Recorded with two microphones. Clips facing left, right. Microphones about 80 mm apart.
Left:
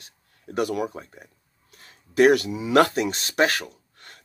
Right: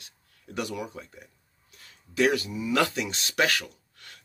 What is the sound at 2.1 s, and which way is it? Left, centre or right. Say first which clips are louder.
Speech: left 7 dB; left.